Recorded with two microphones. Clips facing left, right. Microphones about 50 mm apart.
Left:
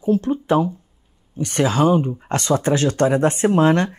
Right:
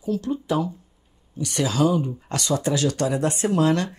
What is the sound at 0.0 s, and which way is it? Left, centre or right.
Speech, left.